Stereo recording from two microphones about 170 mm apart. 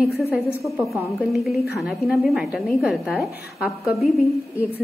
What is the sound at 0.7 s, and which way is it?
A woman's voice, centre (ahead or behind).